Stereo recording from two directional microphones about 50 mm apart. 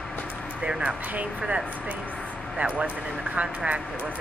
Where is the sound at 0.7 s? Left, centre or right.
Centre.